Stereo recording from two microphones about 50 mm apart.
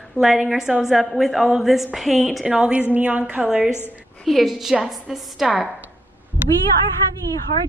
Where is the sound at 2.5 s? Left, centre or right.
Right.